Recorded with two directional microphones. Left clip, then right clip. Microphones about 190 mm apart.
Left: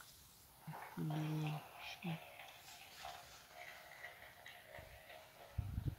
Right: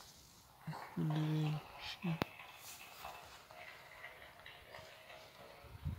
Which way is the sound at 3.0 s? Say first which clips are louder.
Right 1 dB; 65° right (ahead or behind).